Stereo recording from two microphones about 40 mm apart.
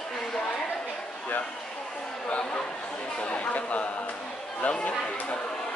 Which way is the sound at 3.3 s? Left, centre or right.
Left.